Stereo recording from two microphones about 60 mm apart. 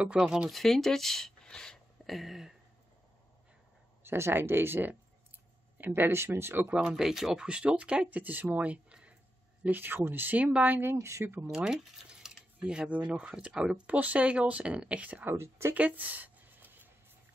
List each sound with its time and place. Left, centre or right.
0.0 s speech: centre
0.5 s speech: centre
2.0 s a sound: centre
4.0 s speech: right
6.7 s speech: centre
9.7 s speech: right
10.8 s speech: right
11.5 s speech: centre
12.9 s speech: right
13.3 s speech: centre
13.8 s speech: right
15.0 s speech: right
15.3 s speech: right
15.7 s a sound: right